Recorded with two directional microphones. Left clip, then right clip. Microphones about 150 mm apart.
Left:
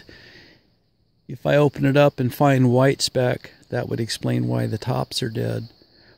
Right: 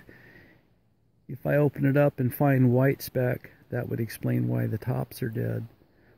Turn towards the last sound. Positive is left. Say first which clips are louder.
# left 7 dB
turn(degrees=25)  # may be behind; listen again after turning